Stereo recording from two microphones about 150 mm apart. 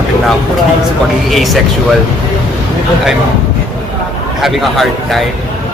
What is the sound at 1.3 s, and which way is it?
Speech, centre (ahead or behind).